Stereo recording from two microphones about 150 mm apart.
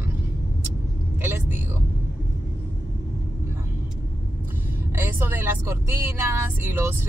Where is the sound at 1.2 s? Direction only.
15° right (ahead or behind).